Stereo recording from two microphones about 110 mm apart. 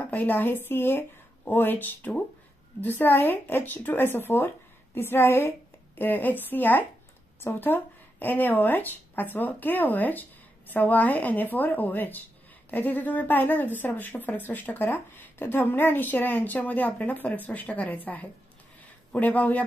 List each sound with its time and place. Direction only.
0.0 s a woman's voice: 15° left (ahead or behind)